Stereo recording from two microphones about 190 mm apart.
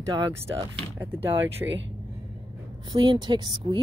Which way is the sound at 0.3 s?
15° right (ahead or behind).